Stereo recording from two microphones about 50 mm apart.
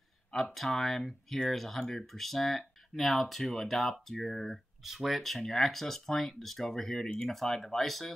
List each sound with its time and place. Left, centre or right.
0.6 s speech: centre